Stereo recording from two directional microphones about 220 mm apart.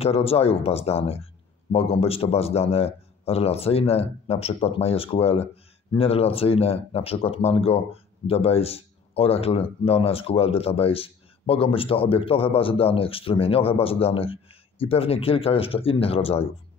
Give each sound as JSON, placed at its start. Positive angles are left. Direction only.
{"t": 0.0, "sound": "speech", "side_deg": 25}